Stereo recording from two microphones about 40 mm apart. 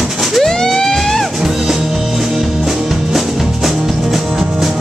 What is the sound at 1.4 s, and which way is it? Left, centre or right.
Music, centre.